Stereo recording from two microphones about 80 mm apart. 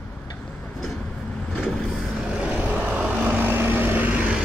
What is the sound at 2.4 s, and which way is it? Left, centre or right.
Vehicle, centre.